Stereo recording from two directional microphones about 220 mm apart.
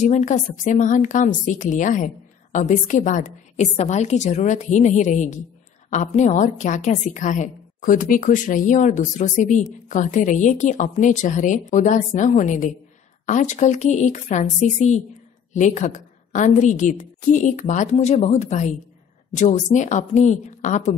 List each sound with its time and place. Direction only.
0.0 s a woman's voice: 35° left (ahead or behind)